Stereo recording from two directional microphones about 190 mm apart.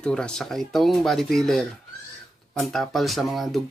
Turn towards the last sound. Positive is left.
turn(degrees=0)  # may be behind; listen again after turning